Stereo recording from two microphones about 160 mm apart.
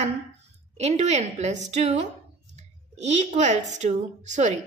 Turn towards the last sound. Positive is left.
turn(degrees=-45)  # may be behind; listen again after turning